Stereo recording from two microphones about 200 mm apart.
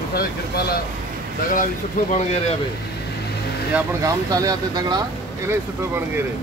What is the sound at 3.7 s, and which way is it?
Speech, 15° right (ahead or behind).